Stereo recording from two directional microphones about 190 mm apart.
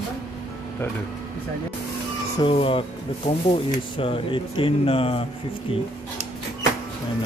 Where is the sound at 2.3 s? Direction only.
25° left (ahead or behind).